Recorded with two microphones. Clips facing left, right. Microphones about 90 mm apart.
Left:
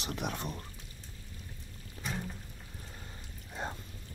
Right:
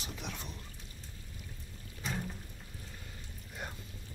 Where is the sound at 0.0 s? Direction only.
60° left (ahead or behind).